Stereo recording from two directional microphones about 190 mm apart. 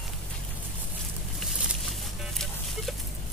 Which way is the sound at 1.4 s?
Centre (ahead or behind).